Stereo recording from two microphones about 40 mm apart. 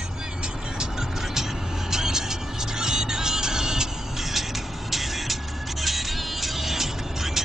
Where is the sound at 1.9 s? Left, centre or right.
Centre.